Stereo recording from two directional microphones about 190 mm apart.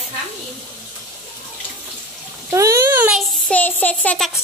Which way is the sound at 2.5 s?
15° right (ahead or behind).